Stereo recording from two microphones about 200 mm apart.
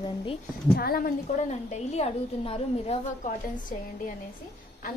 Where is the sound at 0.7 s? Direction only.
50° left (ahead or behind).